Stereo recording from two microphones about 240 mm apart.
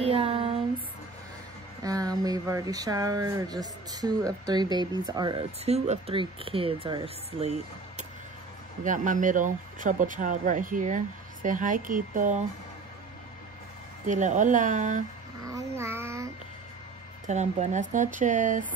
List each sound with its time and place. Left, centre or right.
0.0 s a sound: right
1.8 s speech: centre; by 12.4 s right
14.0 s speech: right
15.4 s child singing: centre
17.3 s speech: right